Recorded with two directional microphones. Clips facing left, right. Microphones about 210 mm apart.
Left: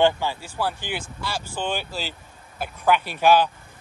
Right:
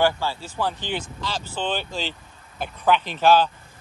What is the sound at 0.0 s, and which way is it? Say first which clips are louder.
A man's voice: left 2 dB; 15° left (ahead or behind).